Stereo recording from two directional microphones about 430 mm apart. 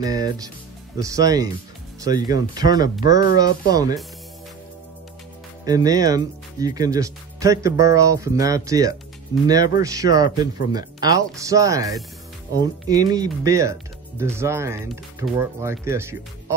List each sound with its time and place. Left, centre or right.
0.0 s speech: centre
5.7 s speech: centre